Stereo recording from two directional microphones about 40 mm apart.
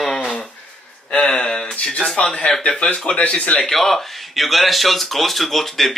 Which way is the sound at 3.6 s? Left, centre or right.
Centre.